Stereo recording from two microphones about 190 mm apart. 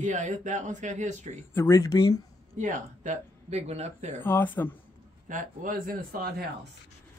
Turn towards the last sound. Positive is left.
turn(degrees=-50)  # may be behind; listen again after turning